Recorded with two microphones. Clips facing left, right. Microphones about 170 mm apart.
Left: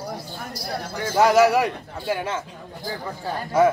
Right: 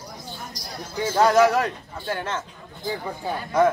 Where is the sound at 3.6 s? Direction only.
10° left (ahead or behind).